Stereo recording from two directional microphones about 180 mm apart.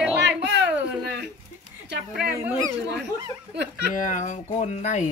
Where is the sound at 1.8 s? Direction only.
65° right (ahead or behind).